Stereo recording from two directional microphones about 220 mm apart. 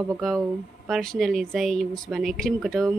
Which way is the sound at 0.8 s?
Centre (ahead or behind).